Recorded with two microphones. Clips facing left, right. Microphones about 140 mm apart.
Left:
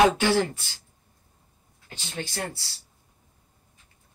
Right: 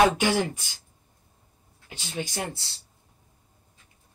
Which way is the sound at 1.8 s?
15° right (ahead or behind).